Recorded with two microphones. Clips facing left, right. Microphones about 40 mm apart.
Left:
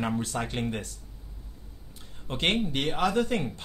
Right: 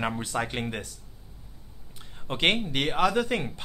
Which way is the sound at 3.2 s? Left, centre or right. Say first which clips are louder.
Even; right.